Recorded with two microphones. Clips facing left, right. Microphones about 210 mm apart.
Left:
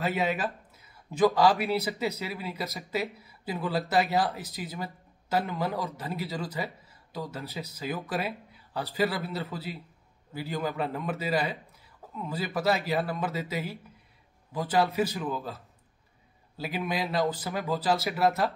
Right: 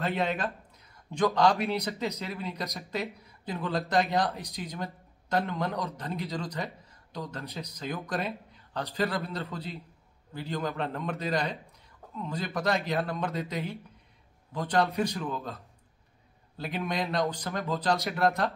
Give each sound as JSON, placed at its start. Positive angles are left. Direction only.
{"t": 0.0, "sound": "a man's voice", "side_deg": 5}